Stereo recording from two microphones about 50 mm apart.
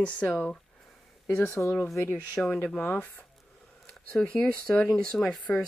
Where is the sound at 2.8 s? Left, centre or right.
Left.